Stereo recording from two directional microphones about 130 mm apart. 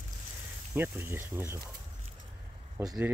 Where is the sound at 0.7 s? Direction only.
15° right (ahead or behind).